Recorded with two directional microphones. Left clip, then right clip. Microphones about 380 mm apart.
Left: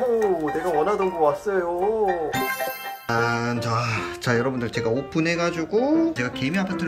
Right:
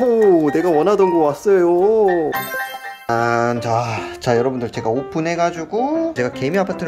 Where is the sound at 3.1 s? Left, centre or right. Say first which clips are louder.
Right 7 dB; centre.